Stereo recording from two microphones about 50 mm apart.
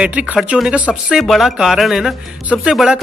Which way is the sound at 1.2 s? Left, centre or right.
Centre.